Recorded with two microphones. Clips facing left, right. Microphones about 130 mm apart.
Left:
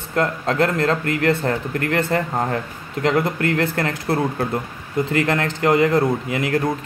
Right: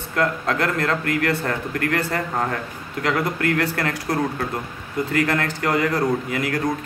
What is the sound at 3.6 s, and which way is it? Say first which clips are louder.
Speech: left 2 dB; 30° left (ahead or behind).